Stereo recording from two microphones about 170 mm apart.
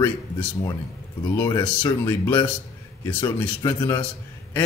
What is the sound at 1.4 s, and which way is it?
A man's voice, 20° left (ahead or behind).